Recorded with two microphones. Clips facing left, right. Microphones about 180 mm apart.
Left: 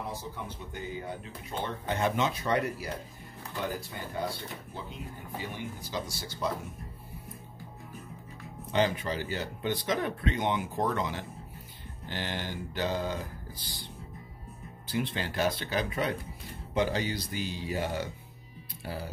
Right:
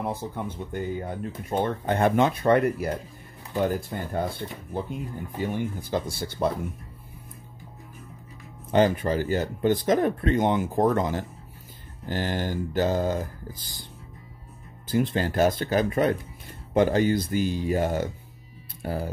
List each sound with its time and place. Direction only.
0.0 s speech: 55° right (ahead or behind)
8.7 s speech: 50° right (ahead or behind)
14.9 s speech: 45° right (ahead or behind)